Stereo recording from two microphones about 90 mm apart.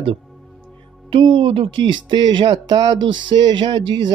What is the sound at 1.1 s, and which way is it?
Speech, 75° right (ahead or behind).